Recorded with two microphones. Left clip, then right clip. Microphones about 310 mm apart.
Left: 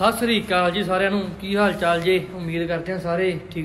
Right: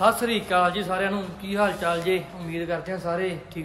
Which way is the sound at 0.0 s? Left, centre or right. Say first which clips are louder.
Left 1 dB; centre.